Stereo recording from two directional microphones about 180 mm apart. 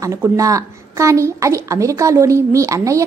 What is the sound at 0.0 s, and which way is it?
A woman's voice, 15° right (ahead or behind).